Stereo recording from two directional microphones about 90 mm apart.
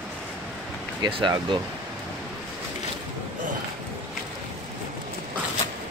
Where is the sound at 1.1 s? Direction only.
60° right (ahead or behind).